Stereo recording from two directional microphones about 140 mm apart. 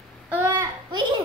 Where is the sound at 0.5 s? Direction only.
30° right (ahead or behind).